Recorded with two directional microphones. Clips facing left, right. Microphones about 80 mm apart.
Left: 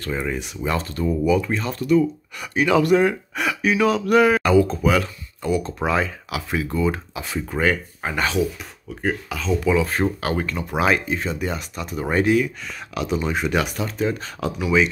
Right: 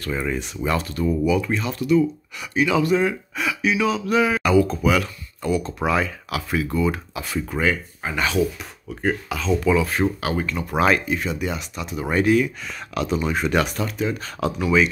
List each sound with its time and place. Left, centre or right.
0.2 s speech: centre
0.7 s speech: left
4.4 s speech: left
7.6 s speech: left
9.0 s speech: centre
9.8 s speech: left
10.2 s speech: left
10.7 s speech: centre
11.1 s speech: left
12.4 s speech: centre
13.8 s speech: left
14.6 s speech: centre